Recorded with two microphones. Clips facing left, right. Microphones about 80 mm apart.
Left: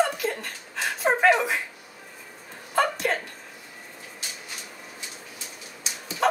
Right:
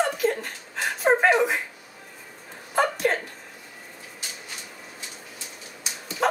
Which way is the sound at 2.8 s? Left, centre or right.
Centre.